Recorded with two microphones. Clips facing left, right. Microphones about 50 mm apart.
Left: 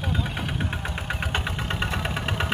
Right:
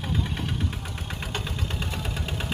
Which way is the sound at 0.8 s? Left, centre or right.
Left.